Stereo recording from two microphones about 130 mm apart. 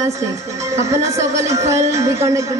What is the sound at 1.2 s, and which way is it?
A man's voice, 25° right (ahead or behind).